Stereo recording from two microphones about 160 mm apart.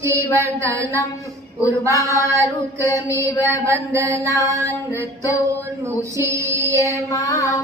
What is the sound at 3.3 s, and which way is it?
Mantra, 20° left (ahead or behind).